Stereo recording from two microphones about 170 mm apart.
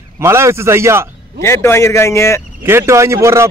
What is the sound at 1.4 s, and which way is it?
Speech, 15° left (ahead or behind).